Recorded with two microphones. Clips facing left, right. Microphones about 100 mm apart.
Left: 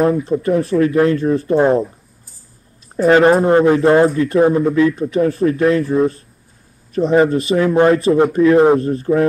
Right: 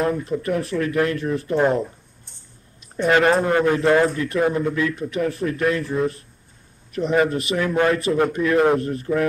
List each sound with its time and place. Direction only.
0.3 s speech: 30° left (ahead or behind)
1.8 s a sound: 5° left (ahead or behind)
3.0 s speech: 30° left (ahead or behind)